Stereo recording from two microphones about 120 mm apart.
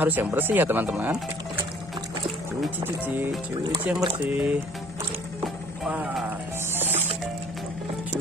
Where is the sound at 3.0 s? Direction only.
15° right (ahead or behind).